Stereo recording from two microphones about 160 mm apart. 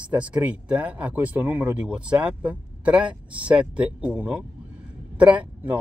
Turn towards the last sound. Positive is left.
turn(degrees=-10)  # may be behind; listen again after turning